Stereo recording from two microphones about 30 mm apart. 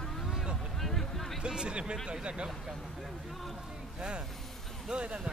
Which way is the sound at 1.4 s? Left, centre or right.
Right.